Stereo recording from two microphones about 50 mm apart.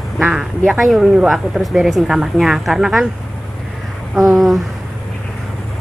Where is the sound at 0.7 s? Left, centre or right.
Centre.